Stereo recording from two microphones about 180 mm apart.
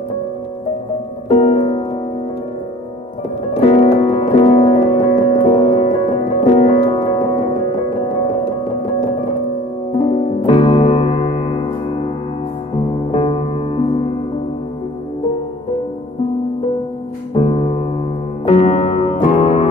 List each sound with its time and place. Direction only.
1.3 s music: 35° left (ahead or behind)
3.6 s music: 35° left (ahead or behind)
9.9 s music: 30° left (ahead or behind)
17.3 s music: 30° left (ahead or behind)